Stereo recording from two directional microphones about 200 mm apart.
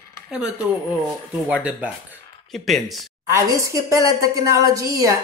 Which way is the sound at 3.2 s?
15° right (ahead or behind).